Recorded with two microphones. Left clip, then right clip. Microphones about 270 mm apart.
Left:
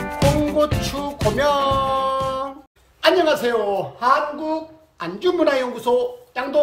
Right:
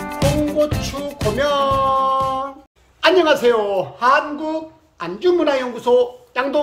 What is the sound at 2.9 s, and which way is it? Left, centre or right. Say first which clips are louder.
Speech: right 2 dB; centre.